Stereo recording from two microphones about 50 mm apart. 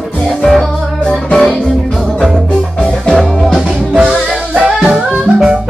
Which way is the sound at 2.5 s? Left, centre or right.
Left.